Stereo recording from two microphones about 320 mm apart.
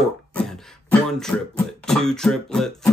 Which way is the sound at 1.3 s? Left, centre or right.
Centre.